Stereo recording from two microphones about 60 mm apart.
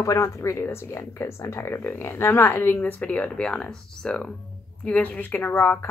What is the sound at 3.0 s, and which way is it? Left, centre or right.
Speech, left.